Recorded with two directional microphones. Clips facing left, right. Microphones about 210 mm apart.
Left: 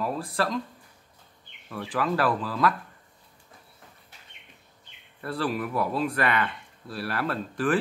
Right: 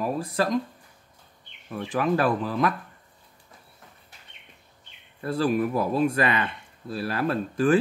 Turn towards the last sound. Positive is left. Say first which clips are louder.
# right 4 dB
turn(degrees=-25)  # may be behind; listen again after turning